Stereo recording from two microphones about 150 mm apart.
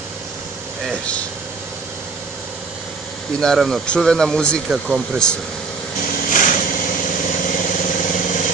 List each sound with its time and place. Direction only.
0.8 s speech: 10° left (ahead or behind)
3.3 s speech: centre (ahead or behind)
6.2 s vehicle: 60° left (ahead or behind)